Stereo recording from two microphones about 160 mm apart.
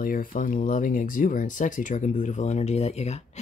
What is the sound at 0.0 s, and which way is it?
Speech, 60° left (ahead or behind).